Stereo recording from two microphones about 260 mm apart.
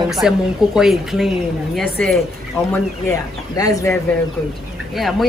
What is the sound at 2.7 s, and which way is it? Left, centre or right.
Speech, centre.